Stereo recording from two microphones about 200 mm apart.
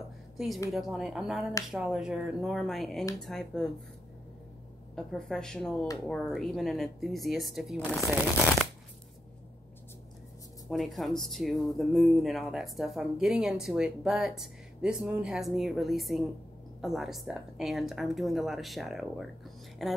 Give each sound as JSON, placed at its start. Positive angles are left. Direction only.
{"t": 0.7, "sound": "speech", "side_deg": 0}
{"t": 4.9, "sound": "speech", "side_deg": 5}
{"t": 10.7, "sound": "speech", "side_deg": 0}